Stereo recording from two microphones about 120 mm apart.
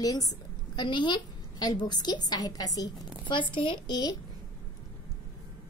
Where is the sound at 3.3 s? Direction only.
45° left (ahead or behind).